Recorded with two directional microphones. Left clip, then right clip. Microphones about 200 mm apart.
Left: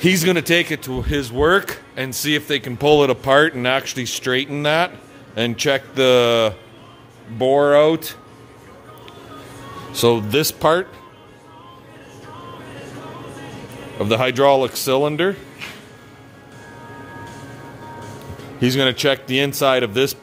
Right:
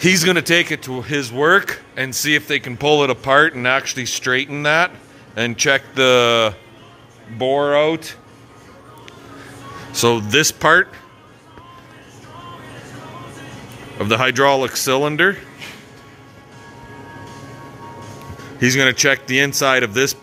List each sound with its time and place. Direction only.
0.0 s speech: 10° left (ahead or behind)
7.3 s speech: 25° left (ahead or behind)
9.9 s a man's voice: centre (ahead or behind)
13.9 s a man's voice: centre (ahead or behind)
18.6 s a man's voice: centre (ahead or behind)